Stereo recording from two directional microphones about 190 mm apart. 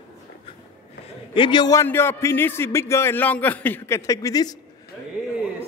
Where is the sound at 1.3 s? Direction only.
25° left (ahead or behind).